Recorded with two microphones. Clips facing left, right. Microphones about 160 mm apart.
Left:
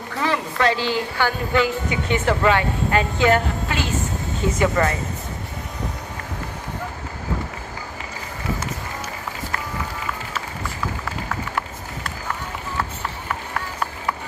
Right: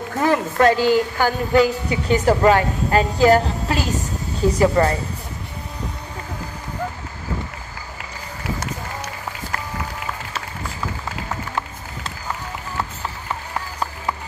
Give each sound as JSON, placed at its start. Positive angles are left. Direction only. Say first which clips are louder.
{"t": 0.1, "sound": "speech", "louder": "right 4 dB", "side_deg": -45}